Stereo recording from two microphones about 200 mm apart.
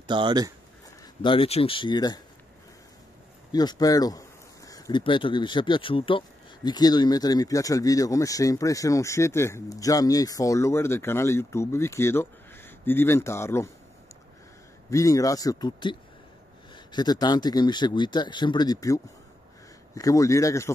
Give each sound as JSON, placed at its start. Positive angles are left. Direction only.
{"t": 0.0, "sound": "speech", "side_deg": -25}
{"t": 1.2, "sound": "speech", "side_deg": 25}
{"t": 3.5, "sound": "speech", "side_deg": 20}
{"t": 14.9, "sound": "speech", "side_deg": 15}